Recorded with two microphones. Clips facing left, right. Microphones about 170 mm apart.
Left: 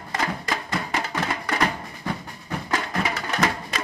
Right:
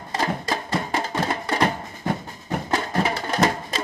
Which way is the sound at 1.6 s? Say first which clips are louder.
Right 4 dB; 45° right (ahead or behind).